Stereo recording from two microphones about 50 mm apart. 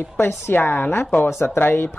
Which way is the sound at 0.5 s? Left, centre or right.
Left.